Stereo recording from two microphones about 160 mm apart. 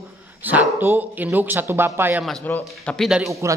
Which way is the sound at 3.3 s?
20° right (ahead or behind).